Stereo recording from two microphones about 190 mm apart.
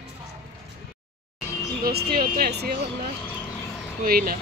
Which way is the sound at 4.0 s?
50° right (ahead or behind).